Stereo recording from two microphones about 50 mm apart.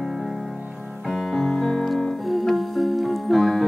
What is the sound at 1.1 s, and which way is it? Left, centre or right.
Music, centre.